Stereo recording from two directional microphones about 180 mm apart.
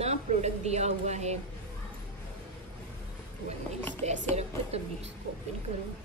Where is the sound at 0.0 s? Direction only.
35° right (ahead or behind).